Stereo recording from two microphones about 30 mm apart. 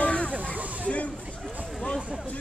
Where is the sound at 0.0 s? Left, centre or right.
Left.